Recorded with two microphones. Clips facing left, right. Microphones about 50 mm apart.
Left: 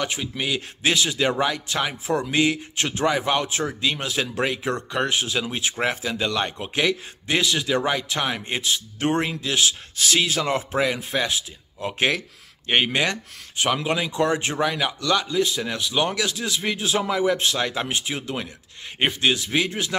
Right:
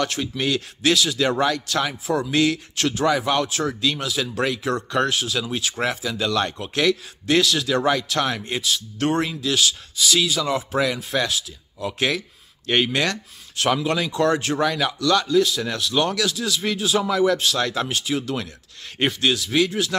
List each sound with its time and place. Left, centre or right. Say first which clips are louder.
0.0 s a man's voice: right 3 dB; centre
0.8 s speech: right 2 dB; left
1.4 s speech: right 2 dB; centre
12.6 s speech: even; left